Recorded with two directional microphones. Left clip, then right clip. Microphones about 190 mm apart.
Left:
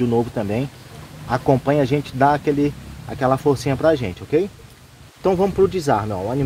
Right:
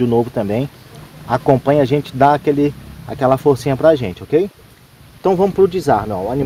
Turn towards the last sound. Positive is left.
turn(degrees=-25)  # may be behind; listen again after turning